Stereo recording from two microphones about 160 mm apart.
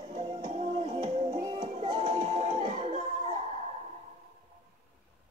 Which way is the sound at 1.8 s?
40° right (ahead or behind).